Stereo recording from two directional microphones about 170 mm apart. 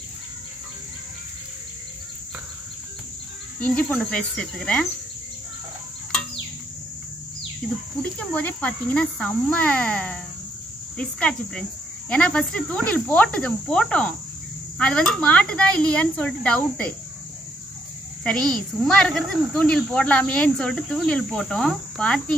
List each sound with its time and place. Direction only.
3.6 s speech: 5° left (ahead or behind)
7.6 s speech: centre (ahead or behind)
18.2 s speech: 5° left (ahead or behind)